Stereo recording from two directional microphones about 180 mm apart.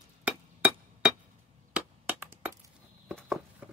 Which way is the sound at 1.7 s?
10° right (ahead or behind).